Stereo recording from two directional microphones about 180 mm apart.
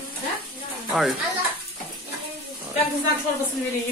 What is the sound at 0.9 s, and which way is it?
Speech, centre (ahead or behind).